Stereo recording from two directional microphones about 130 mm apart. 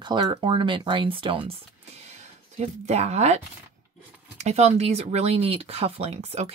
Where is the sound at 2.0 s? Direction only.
60° right (ahead or behind).